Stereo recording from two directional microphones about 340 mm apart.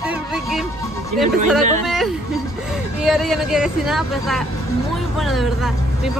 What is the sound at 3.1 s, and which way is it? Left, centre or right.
Speech, centre.